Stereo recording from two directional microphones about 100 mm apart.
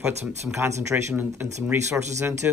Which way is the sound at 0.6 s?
30° right (ahead or behind).